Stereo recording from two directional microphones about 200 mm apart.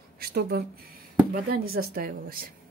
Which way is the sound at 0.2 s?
55° right (ahead or behind).